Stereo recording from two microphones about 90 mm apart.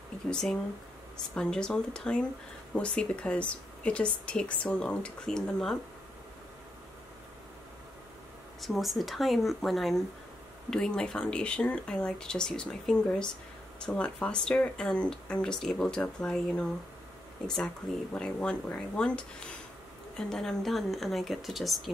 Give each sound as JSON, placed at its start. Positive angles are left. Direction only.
{"t": 0.3, "sound": "speech", "side_deg": 5}
{"t": 8.5, "sound": "speech", "side_deg": 0}